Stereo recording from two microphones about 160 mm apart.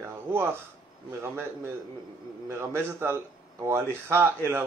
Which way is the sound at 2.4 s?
15° right (ahead or behind).